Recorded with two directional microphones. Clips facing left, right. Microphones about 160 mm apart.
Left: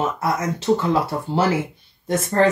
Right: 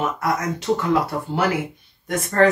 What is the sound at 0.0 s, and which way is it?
Speech, 30° left (ahead or behind).